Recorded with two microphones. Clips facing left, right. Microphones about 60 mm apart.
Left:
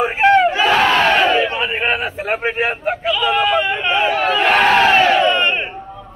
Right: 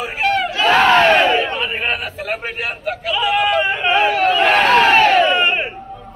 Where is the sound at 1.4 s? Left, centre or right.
Centre.